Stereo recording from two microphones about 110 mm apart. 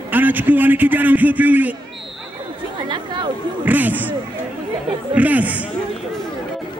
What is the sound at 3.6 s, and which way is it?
A man's voice, 15° right (ahead or behind).